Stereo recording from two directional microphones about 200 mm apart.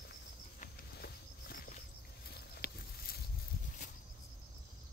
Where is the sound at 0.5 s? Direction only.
45° left (ahead or behind).